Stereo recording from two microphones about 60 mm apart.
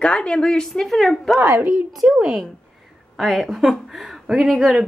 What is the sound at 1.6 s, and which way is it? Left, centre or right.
Speech, right.